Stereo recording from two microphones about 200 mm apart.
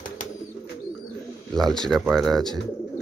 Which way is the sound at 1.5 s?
Centre (ahead or behind).